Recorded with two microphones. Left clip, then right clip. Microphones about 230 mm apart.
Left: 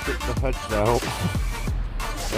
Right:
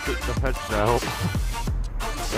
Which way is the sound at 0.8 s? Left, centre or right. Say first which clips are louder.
Even; centre.